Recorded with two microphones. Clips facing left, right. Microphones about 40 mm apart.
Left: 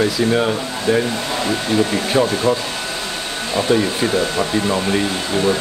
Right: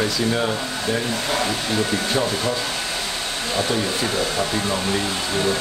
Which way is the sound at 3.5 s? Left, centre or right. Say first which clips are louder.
Left 6 dB; centre.